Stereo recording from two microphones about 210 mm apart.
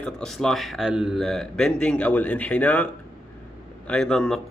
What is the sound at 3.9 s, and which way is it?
Speech, 5° left (ahead or behind).